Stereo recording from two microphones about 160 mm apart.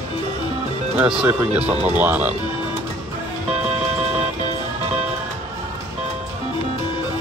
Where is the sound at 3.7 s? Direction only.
45° right (ahead or behind).